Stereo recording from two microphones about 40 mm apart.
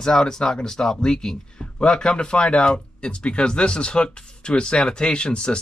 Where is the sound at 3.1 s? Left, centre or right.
Left.